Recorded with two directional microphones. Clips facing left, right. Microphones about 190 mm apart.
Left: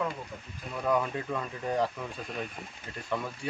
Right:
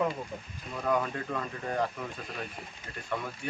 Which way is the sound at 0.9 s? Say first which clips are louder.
Left 1 dB; 10° left (ahead or behind).